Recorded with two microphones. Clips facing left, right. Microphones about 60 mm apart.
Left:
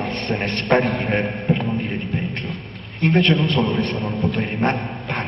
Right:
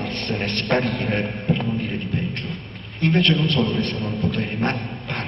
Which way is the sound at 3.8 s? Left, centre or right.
Centre.